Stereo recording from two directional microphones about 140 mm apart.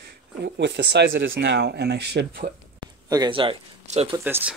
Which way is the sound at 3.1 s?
35° right (ahead or behind).